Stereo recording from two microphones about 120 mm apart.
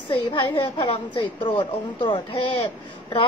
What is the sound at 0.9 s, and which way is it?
A woman's voice, 45° left (ahead or behind).